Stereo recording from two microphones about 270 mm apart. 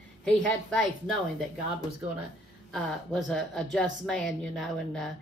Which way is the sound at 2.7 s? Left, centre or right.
Centre.